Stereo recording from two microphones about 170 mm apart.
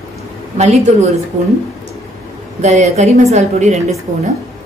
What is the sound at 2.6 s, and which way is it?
A woman's voice, 40° right (ahead or behind).